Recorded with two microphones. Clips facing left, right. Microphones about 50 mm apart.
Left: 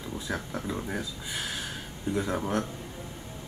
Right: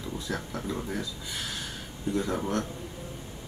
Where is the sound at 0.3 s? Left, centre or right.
Centre.